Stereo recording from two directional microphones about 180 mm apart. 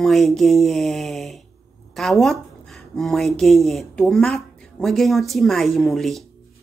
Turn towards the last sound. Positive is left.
turn(degrees=0)  # may be behind; listen again after turning